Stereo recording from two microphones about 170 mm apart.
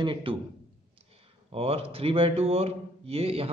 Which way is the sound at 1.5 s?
35° right (ahead or behind).